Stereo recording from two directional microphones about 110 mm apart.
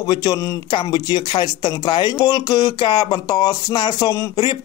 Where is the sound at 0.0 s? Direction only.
40° left (ahead or behind).